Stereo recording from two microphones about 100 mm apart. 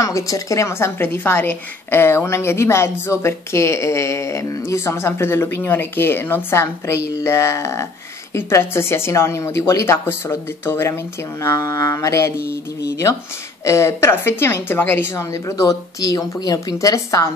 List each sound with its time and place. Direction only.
0.0 s a woman's voice: 30° left (ahead or behind)
13.7 s a woman's voice: 30° left (ahead or behind)